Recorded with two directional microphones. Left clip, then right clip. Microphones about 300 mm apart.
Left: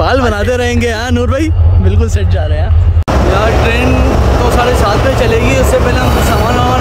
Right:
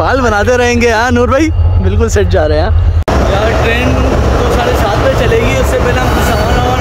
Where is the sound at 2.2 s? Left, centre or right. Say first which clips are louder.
Right 9 dB; centre.